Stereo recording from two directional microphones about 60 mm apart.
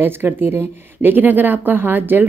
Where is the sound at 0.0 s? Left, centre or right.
Right.